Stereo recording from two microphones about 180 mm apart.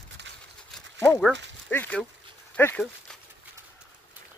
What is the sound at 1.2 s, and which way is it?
Speech, 5° left (ahead or behind).